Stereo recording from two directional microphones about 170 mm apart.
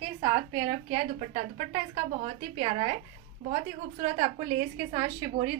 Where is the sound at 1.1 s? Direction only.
40° right (ahead or behind).